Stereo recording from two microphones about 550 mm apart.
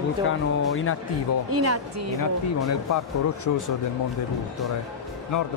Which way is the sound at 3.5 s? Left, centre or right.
Left.